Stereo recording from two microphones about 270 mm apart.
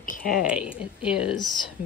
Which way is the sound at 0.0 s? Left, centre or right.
Left.